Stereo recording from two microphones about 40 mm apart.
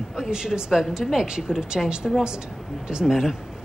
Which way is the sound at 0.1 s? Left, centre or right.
Centre.